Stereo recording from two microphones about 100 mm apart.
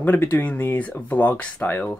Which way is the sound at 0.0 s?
20° left (ahead or behind).